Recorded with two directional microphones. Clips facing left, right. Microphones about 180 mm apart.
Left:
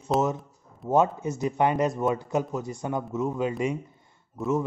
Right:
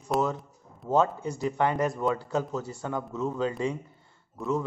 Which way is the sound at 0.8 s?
20° left (ahead or behind).